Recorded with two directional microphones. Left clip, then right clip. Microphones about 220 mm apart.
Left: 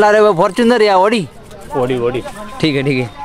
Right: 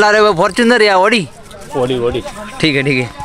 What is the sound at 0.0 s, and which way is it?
Speech, 15° left (ahead or behind).